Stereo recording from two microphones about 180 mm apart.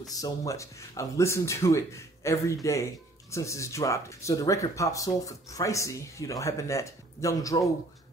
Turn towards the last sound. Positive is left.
turn(degrees=20)  # may be behind; listen again after turning